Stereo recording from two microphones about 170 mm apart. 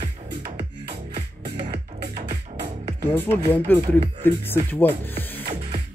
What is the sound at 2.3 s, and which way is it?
Music, 30° right (ahead or behind).